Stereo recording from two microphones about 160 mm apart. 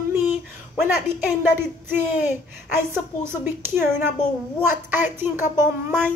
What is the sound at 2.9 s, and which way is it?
Speech, 15° right (ahead or behind).